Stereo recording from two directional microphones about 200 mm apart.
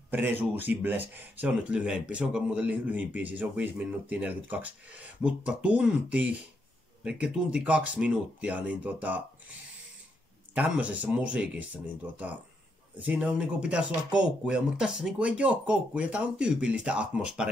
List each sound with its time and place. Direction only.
0.1 s speech: 10° right (ahead or behind)
10.5 s speech: 5° right (ahead or behind)